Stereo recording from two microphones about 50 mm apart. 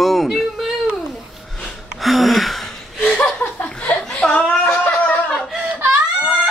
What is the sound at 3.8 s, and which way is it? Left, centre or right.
Chuckle, left.